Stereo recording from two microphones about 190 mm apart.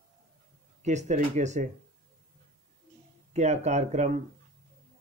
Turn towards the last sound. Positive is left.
turn(degrees=-40)  # may be behind; listen again after turning